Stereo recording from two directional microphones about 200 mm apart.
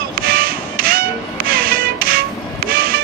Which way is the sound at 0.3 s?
45° right (ahead or behind).